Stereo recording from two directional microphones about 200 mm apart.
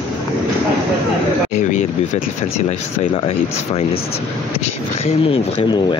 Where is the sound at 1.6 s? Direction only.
35° left (ahead or behind).